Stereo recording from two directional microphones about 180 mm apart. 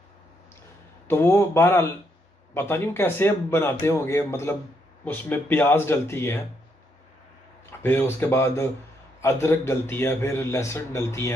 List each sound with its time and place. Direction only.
1.0 s a man's voice: 10° left (ahead or behind)
7.8 s a man's voice: 10° left (ahead or behind)